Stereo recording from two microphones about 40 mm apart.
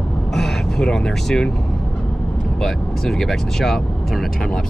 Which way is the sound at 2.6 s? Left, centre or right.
Centre.